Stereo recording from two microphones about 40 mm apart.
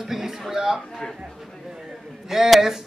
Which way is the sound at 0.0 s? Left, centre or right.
Centre.